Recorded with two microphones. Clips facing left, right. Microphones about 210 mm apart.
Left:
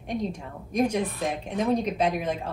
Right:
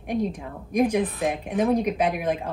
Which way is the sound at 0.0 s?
15° right (ahead or behind).